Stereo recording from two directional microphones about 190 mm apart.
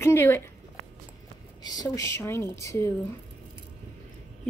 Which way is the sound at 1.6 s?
20° left (ahead or behind).